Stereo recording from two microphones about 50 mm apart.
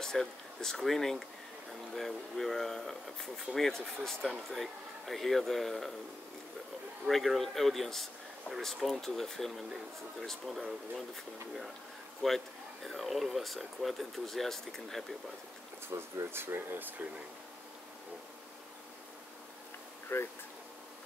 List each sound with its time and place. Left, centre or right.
0.0 s speech: centre
7.1 s speech: centre
12.2 s speech: centre
15.9 s speech: right
16.3 s speech: right
20.1 s speech: left